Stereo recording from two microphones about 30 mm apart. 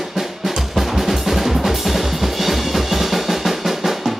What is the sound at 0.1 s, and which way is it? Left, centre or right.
Music, centre.